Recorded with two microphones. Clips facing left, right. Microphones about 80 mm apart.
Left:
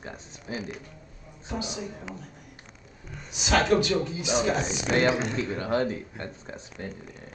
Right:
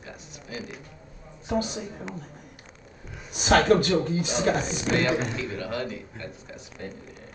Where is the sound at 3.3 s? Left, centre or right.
Right.